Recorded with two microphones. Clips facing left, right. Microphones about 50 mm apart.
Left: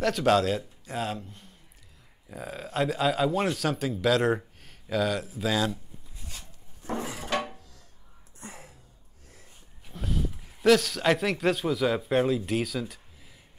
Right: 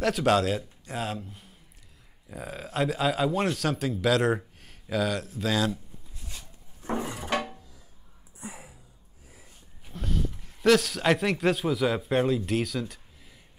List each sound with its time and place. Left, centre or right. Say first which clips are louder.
0.0 s a man's voice: even; centre
7.0 s music: even; centre
8.4 s a sound: right 2 dB; centre